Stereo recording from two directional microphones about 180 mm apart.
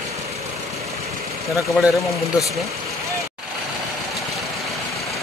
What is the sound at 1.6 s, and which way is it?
Speech, centre (ahead or behind).